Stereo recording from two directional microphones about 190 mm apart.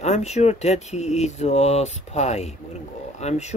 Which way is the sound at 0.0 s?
35° left (ahead or behind).